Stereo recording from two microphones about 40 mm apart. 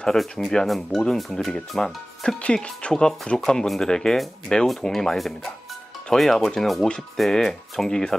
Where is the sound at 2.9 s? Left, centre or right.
Centre.